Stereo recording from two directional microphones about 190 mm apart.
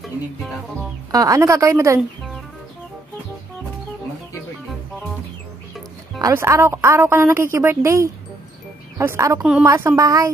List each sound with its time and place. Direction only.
1.1 s a woman's voice: 20° right (ahead or behind)
6.1 s a woman's voice: 15° right (ahead or behind)
9.4 s a woman's voice: centre (ahead or behind)
9.7 s a woman's voice: 15° right (ahead or behind)